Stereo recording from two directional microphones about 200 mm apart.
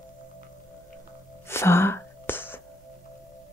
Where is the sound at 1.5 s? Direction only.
15° left (ahead or behind).